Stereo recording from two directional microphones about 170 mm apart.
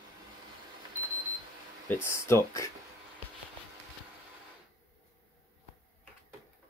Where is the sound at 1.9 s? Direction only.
15° left (ahead or behind).